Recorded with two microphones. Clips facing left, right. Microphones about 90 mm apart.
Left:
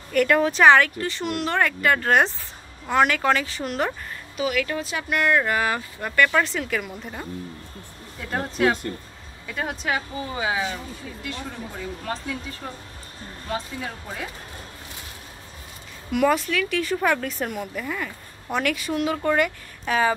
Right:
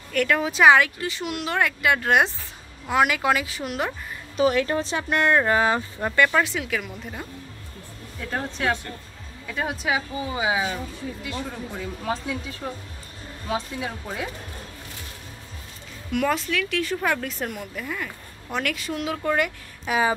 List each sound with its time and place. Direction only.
0.1 s speech: centre (ahead or behind)
4.4 s speech: 35° right (ahead or behind)
6.3 s speech: 5° right (ahead or behind)
12.1 s speech: 5° right (ahead or behind)
16.1 s speech: 5° left (ahead or behind)